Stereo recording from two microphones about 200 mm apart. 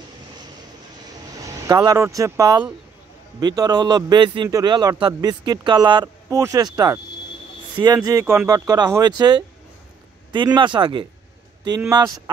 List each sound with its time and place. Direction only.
1.4 s a man's voice: 20° right (ahead or behind)